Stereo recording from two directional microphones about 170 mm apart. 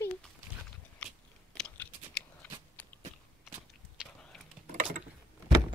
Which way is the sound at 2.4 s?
5° left (ahead or behind).